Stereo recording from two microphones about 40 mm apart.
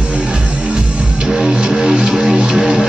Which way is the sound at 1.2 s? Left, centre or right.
Centre.